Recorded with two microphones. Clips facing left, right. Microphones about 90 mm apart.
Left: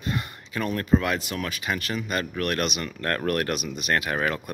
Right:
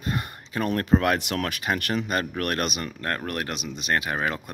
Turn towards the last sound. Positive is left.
turn(degrees=-20)  # may be behind; listen again after turning